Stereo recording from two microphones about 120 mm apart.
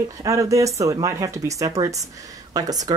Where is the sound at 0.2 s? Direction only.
25° right (ahead or behind).